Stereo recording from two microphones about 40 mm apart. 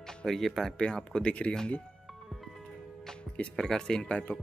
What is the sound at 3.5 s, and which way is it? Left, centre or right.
Speech, centre.